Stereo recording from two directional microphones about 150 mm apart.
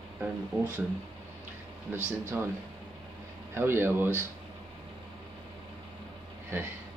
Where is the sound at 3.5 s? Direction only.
15° right (ahead or behind).